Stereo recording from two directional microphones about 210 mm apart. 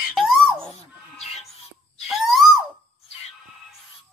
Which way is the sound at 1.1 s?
30° left (ahead or behind).